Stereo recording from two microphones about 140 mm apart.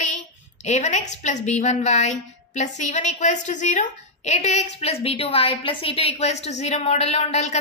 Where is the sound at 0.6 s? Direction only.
55° left (ahead or behind).